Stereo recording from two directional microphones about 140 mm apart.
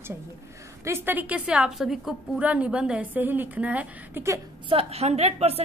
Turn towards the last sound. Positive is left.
turn(degrees=-50)  # may be behind; listen again after turning